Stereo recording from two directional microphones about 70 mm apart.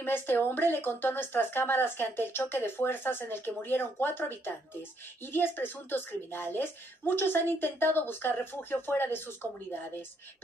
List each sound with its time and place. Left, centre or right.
0.0 s speech: left